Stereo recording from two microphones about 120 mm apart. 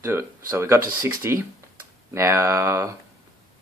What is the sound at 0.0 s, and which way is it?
Speech, 20° right (ahead or behind).